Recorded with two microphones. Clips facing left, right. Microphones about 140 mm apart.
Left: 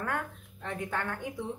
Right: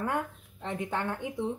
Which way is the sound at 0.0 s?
20° right (ahead or behind).